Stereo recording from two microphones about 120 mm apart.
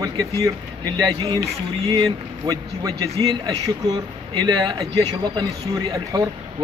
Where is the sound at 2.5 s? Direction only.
35° right (ahead or behind).